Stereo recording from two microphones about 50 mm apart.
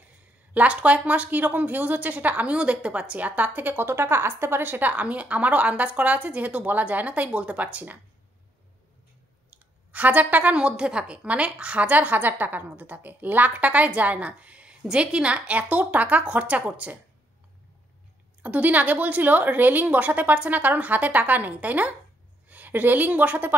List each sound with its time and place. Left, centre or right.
0.6 s a woman's voice: right
5.0 s a woman's voice: right
9.9 s a woman's voice: right
10.5 s a woman's voice: centre
18.4 s a woman's voice: right